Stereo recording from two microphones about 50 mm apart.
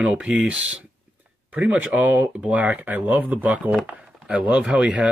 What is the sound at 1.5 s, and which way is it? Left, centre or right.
Speech, right.